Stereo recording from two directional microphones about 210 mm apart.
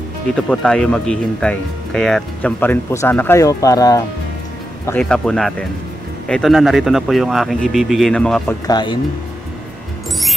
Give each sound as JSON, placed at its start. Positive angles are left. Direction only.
{"t": 0.5, "sound": "speech", "side_deg": 5}
{"t": 4.8, "sound": "speech", "side_deg": 5}
{"t": 8.6, "sound": "speech", "side_deg": 20}